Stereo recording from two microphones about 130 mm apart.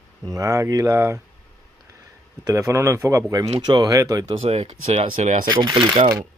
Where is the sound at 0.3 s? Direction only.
25° right (ahead or behind).